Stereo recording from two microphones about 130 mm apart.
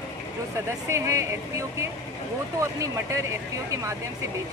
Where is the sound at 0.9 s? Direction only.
20° right (ahead or behind).